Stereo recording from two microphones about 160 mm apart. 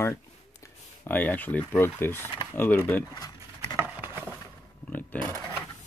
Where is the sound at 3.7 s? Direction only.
10° right (ahead or behind).